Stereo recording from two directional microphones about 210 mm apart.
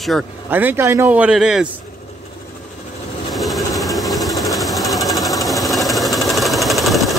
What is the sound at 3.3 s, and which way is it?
Sewing machine, centre (ahead or behind).